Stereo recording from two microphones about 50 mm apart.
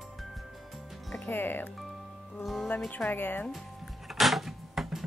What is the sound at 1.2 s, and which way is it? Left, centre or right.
Speech, left.